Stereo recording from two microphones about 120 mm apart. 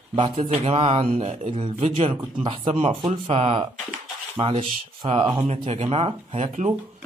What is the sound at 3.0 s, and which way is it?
Mantra, 40° right (ahead or behind).